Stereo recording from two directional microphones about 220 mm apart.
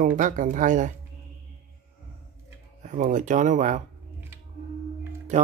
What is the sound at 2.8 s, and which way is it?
Speech, 35° right (ahead or behind).